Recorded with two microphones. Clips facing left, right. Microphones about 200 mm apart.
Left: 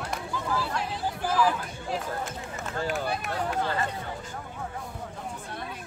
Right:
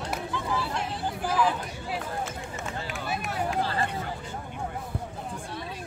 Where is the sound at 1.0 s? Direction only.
5° left (ahead or behind).